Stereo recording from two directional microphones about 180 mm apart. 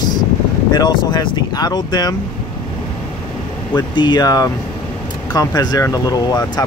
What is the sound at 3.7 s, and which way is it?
Speech, 25° left (ahead or behind).